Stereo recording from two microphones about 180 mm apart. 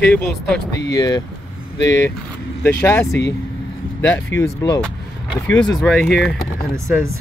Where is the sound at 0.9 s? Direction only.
20° left (ahead or behind).